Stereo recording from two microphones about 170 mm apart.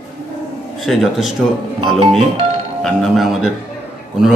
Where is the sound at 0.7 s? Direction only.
Centre (ahead or behind).